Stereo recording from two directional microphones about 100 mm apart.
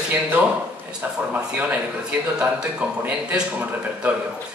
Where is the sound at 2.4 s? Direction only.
10° right (ahead or behind).